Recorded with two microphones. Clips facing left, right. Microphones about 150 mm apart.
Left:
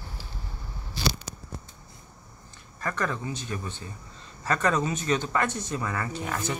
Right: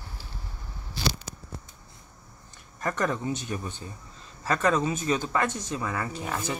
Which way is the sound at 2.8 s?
20° right (ahead or behind).